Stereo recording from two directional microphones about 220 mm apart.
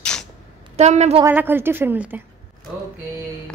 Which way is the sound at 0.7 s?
30° right (ahead or behind).